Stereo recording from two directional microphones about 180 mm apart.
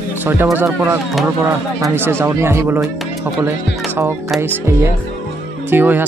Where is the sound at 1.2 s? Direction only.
15° right (ahead or behind).